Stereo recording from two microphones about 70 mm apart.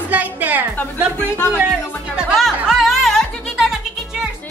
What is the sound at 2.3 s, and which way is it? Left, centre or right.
Music, centre.